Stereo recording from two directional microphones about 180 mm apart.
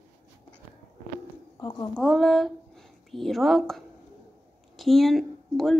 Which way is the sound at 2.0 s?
Centre (ahead or behind).